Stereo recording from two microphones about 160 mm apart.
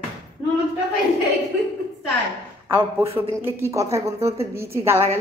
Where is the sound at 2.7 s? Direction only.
15° right (ahead or behind).